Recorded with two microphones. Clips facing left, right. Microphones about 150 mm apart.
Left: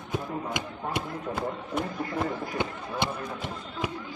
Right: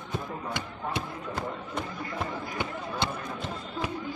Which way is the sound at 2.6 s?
10° left (ahead or behind).